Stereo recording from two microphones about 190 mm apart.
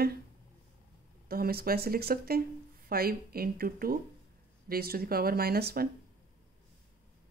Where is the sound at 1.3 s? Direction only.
55° right (ahead or behind).